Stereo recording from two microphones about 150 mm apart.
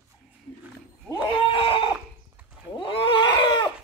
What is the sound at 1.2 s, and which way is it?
Goat, 35° left (ahead or behind).